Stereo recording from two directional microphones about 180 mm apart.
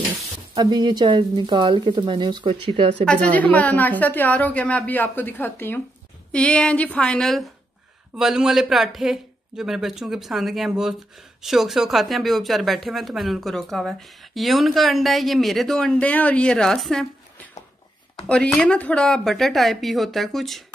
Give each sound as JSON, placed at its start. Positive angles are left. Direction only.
{"t": 0.6, "sound": "speech", "side_deg": -20}
{"t": 3.1, "sound": "a woman's voice", "side_deg": 5}
{"t": 18.2, "sound": "speech", "side_deg": 5}